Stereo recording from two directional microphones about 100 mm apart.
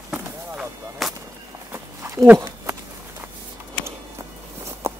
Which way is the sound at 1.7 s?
30° right (ahead or behind).